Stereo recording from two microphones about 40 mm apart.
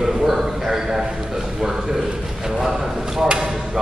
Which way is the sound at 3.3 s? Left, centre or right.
Right.